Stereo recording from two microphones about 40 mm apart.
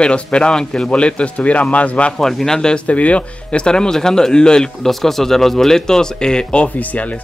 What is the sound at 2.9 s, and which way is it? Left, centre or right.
Speech, left.